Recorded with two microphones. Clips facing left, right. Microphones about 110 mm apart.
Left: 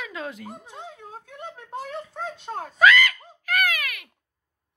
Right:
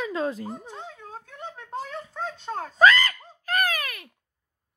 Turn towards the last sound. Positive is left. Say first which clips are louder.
# even
turn(degrees=-35)  # may be behind; listen again after turning